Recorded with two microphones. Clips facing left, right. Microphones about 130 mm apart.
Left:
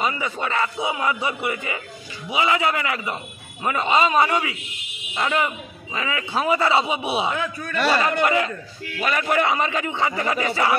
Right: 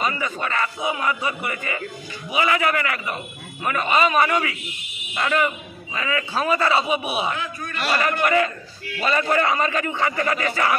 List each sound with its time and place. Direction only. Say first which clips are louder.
0.0 s a man's voice: even; 20° left (ahead or behind)
9.0 s a man's voice: right 1 dB; 10° left (ahead or behind)